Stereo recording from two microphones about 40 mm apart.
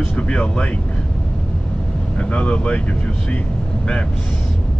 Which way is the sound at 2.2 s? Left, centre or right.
Left.